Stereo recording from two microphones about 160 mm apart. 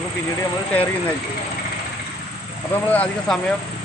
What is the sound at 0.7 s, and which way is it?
Speech, 10° left (ahead or behind).